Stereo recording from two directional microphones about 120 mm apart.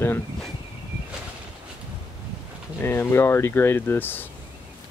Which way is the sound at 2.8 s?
20° left (ahead or behind).